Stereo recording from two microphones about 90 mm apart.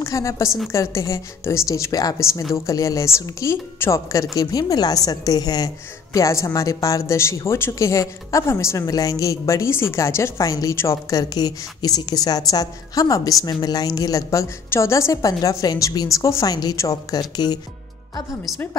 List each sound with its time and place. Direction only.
0.0 s a woman's voice: 35° left (ahead or behind)